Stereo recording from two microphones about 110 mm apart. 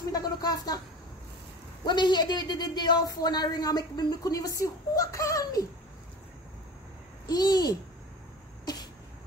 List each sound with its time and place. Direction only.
0.1 s speech: 35° left (ahead or behind)
1.9 s speech: 40° left (ahead or behind)
7.2 s speech: 35° left (ahead or behind)